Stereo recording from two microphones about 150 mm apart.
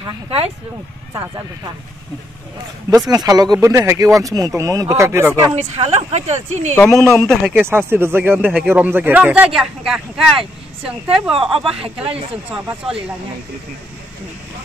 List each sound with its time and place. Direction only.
0.0 s speech: 40° right (ahead or behind)
3.1 s speech: 25° right (ahead or behind)
5.6 s speech: 45° right (ahead or behind)
6.7 s a man's voice: 10° left (ahead or behind)
7.6 s speech: 15° right (ahead or behind)
10.3 s speech: 40° right (ahead or behind)